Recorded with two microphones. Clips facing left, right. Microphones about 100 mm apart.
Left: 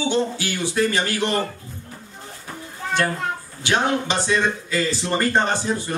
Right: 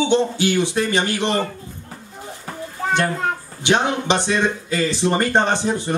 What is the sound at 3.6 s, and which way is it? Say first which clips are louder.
Speech: right 2 dB; 20° right (ahead or behind).